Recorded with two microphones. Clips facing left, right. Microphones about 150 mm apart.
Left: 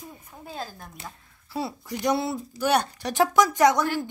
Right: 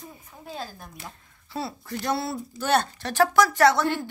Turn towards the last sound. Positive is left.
turn(degrees=15)  # may be behind; listen again after turning